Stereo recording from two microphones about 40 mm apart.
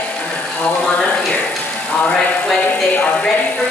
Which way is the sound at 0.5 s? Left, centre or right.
Left.